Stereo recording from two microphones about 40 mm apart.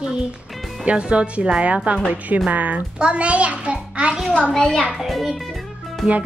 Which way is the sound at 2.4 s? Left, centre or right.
Right.